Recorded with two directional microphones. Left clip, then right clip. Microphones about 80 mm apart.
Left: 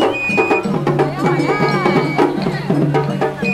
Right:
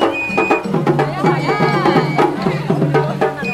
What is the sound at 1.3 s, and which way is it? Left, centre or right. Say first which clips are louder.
Music: even; centre.